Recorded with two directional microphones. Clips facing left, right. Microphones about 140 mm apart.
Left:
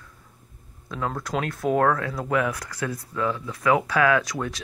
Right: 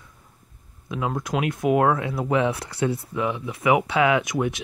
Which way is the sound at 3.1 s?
15° right (ahead or behind).